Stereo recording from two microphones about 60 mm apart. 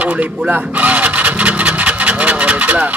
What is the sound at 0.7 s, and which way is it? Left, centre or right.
Vehicle, right.